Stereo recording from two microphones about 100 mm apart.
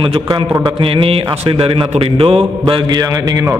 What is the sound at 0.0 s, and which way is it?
A man's voice, 55° right (ahead or behind).